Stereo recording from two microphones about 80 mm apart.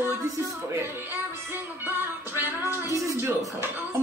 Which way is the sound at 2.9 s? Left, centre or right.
Right.